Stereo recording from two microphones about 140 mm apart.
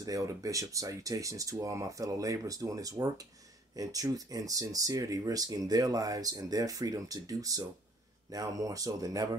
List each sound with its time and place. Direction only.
0.0 s speech: 25° right (ahead or behind)